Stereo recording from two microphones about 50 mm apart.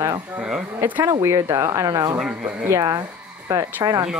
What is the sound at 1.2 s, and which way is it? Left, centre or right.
Speech, right.